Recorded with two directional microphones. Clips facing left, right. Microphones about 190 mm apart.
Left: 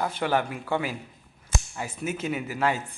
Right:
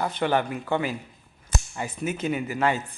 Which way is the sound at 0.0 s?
5° left (ahead or behind).